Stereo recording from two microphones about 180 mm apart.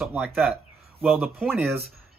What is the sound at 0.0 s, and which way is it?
Speech, 5° right (ahead or behind).